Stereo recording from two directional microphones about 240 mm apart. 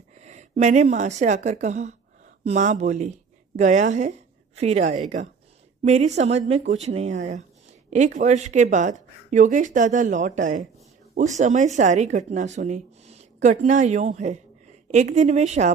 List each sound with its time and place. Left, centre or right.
0.1 s a woman's voice: right